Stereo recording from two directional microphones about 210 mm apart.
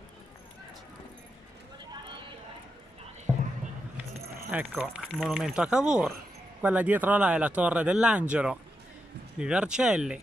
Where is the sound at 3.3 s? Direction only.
20° right (ahead or behind).